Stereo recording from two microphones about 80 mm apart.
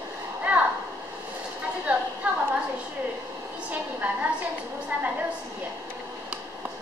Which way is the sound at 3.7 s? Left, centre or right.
Right.